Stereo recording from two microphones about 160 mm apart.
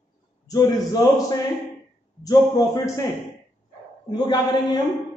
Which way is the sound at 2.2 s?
25° left (ahead or behind).